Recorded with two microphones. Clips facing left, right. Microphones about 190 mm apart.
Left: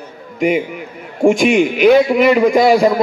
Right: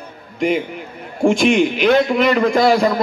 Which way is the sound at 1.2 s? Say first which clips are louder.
Left 2 dB; 10° left (ahead or behind).